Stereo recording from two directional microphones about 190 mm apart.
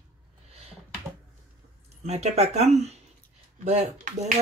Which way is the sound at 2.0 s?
35° right (ahead or behind).